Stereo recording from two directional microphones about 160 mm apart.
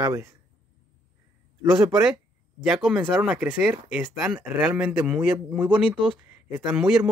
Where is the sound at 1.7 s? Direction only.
5° right (ahead or behind).